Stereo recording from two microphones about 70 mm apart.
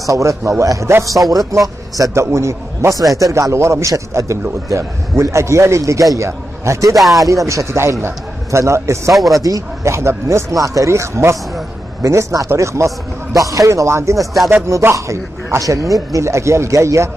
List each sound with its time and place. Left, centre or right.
0.0 s a man's voice: right
1.1 s speech: centre
2.1 s a man's voice: right
3.2 s a man's voice: right
7.0 s speech: centre
7.2 s a man's voice: right
9.3 s a man's voice: right
13.7 s a man's voice: right
14.1 s speech: centre
14.7 s a man's voice: right